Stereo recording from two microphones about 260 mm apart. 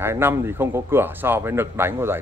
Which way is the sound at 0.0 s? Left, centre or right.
Centre.